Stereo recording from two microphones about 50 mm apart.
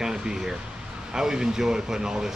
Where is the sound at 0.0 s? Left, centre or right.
Centre.